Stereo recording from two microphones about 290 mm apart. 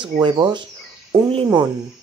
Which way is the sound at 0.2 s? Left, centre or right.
Centre.